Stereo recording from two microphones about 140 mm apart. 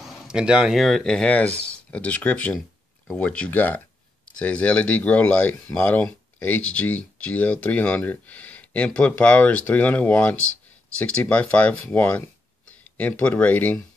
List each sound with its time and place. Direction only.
0.0 s speech: centre (ahead or behind)